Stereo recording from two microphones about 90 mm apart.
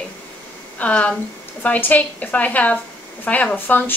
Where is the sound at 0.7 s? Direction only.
15° left (ahead or behind).